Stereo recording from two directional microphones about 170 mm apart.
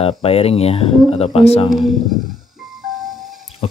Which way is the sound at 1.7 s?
Centre (ahead or behind).